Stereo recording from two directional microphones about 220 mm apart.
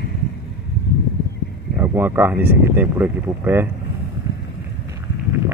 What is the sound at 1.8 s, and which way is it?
Speech, 10° right (ahead or behind).